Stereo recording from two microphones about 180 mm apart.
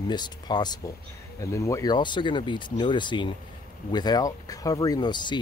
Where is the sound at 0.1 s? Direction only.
25° left (ahead or behind).